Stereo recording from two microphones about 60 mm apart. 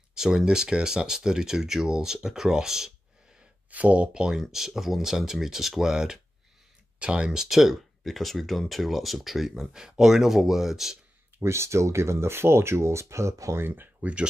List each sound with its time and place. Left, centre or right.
0.1 s speech: centre
3.7 s speech: right; by 11.0 s centre
11.3 s speech: right
14.0 s speech: right